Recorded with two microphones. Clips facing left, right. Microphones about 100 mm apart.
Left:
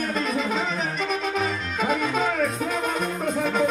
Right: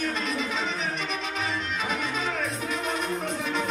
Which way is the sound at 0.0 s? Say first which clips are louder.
Left 4 dB; 45° left (ahead or behind).